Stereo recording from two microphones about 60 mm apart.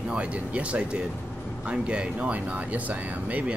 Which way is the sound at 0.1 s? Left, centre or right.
Right.